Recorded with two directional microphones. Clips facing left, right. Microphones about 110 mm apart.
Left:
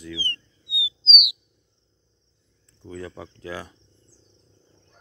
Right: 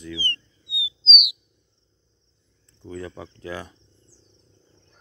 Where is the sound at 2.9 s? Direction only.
Centre (ahead or behind).